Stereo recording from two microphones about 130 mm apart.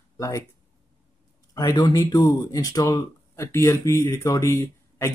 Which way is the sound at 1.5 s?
30° left (ahead or behind).